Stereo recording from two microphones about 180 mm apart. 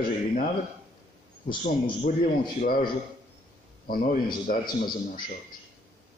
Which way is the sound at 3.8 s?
55° left (ahead or behind).